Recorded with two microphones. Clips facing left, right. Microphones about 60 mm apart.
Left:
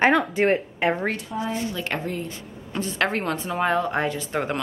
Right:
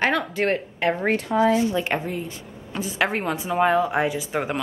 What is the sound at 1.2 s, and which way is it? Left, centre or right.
Speech, right.